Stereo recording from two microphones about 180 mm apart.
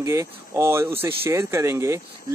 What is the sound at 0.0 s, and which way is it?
A man's voice, 15° right (ahead or behind).